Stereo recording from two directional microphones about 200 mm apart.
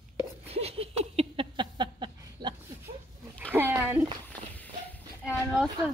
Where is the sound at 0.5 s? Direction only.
30° right (ahead or behind).